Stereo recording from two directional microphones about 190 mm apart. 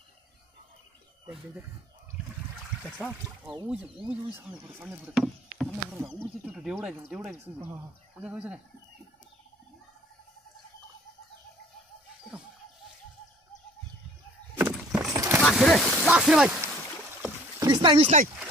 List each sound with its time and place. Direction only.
2.8 s speech: 5° left (ahead or behind)
3.6 s speech: 5° right (ahead or behind)
5.2 s speech: centre (ahead or behind)
14.5 s a sound: 10° right (ahead or behind)
15.4 s speech: centre (ahead or behind)
17.2 s rowboat: 20° right (ahead or behind)